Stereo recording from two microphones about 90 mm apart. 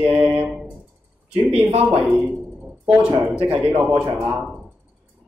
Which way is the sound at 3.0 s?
15° right (ahead or behind).